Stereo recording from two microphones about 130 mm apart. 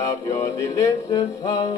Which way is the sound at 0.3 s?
25° left (ahead or behind).